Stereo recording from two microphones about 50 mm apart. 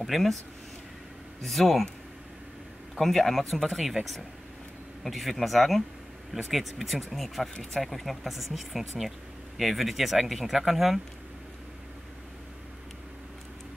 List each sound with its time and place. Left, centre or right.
0.0 s speech: centre
1.4 s speech: centre
3.0 s speech: centre